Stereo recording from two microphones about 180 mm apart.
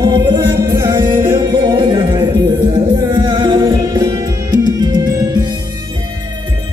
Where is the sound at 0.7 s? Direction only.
15° right (ahead or behind).